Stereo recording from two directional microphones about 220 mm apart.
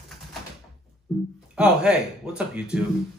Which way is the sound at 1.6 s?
5° right (ahead or behind).